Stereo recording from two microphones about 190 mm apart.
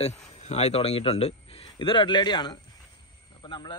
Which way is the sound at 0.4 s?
35° left (ahead or behind).